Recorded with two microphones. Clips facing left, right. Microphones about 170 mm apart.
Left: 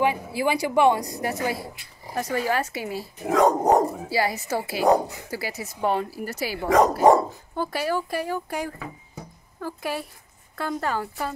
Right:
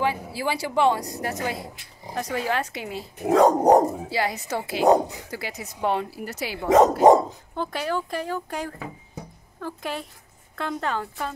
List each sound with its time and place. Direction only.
0.0 s a woman's voice: 15° left (ahead or behind)
3.3 s dog: 30° right (ahead or behind)
4.1 s speech: 5° left (ahead or behind)
4.8 s speech: 20° right (ahead or behind)
5.3 s a woman's voice: 5° left (ahead or behind)